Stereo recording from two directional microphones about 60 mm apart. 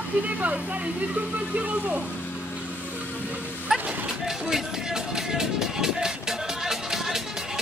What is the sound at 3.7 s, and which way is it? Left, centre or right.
Speech, centre.